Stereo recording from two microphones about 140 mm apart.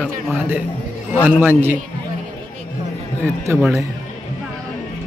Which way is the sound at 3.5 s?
20° right (ahead or behind).